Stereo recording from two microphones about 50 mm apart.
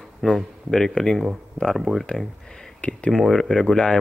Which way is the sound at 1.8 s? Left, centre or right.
Centre.